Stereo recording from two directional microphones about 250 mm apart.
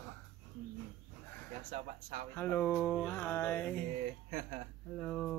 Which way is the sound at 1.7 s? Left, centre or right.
Right.